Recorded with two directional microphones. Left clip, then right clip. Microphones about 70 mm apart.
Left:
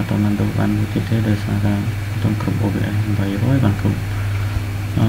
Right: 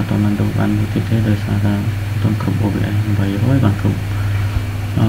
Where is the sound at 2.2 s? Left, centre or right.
Centre.